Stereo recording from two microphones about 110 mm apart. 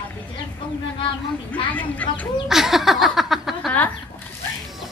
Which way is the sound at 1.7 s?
15° left (ahead or behind).